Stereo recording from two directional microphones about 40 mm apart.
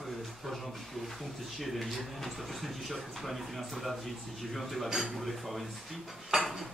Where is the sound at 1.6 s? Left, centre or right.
Centre.